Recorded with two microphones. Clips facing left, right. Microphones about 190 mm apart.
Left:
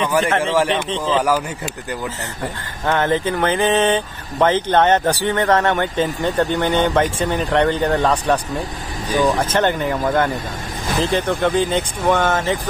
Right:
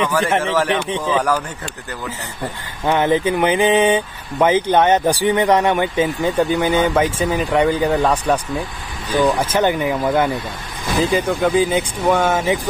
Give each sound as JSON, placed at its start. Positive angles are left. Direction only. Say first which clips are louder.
{"t": 0.0, "sound": "a man's voice", "louder": "even", "side_deg": 15}
{"t": 0.7, "sound": "speech", "louder": "even", "side_deg": -10}
{"t": 2.4, "sound": "speech", "louder": "right 2 dB", "side_deg": -15}